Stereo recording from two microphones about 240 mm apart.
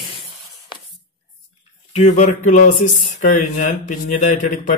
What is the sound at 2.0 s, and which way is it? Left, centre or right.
Speech, left.